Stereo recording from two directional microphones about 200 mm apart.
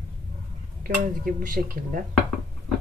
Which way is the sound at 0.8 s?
45° right (ahead or behind).